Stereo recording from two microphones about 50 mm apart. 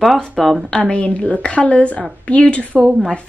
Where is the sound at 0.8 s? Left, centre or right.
Left.